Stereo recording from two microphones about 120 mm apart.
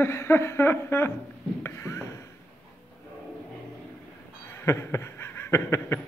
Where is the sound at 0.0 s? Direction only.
20° left (ahead or behind).